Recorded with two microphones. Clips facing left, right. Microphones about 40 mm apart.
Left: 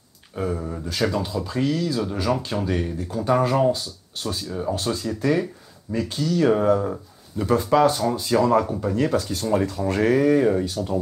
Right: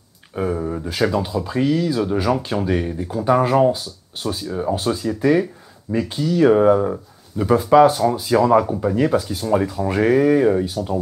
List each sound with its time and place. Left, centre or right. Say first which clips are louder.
0.4 s speech: right 5 dB; centre